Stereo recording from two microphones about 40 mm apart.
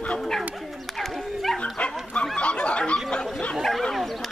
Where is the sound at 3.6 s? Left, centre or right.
Centre.